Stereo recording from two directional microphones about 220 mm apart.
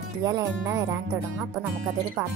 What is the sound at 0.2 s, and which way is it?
Speech, 15° right (ahead or behind).